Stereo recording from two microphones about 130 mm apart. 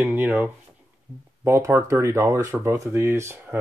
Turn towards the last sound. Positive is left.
turn(degrees=-15)  # may be behind; listen again after turning